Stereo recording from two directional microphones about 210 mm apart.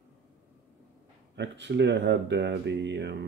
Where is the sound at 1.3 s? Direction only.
55° right (ahead or behind).